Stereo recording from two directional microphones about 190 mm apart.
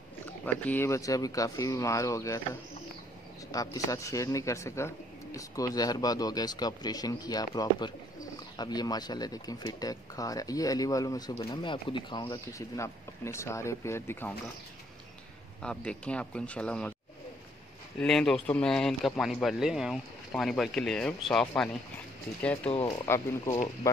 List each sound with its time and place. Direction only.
0.7 s speech: 15° left (ahead or behind)
3.5 s speech: 15° left (ahead or behind)
15.6 s speech: 5° left (ahead or behind)
18.0 s speech: 5° left (ahead or behind)
22.7 s speech: 25° left (ahead or behind)